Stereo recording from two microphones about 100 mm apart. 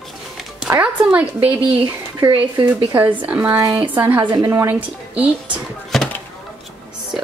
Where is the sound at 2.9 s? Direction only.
20° right (ahead or behind).